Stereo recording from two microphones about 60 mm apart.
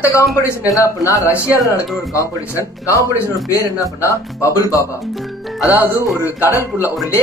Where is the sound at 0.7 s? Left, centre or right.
Left.